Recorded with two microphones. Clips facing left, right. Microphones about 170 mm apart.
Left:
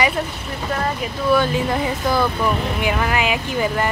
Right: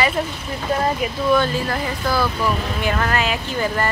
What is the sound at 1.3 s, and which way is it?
Speech, 15° left (ahead or behind).